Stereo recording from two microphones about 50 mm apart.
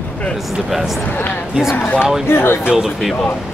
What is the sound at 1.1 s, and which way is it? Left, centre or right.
Speech, left.